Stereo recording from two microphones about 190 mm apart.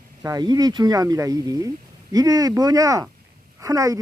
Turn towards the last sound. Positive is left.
turn(degrees=-15)  # may be behind; listen again after turning